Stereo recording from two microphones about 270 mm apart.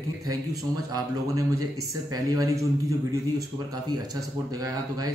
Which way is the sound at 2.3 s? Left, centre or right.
Centre.